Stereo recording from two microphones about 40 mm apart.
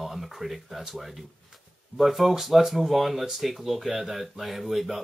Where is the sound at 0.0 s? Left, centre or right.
Centre.